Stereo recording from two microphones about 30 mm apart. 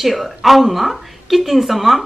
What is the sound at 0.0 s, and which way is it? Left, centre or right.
Speech, centre.